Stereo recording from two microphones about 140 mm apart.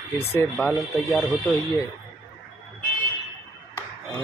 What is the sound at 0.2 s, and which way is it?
Speech, 15° left (ahead or behind).